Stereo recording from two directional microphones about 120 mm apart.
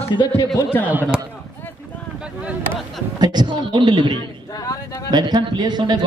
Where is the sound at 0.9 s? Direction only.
15° right (ahead or behind).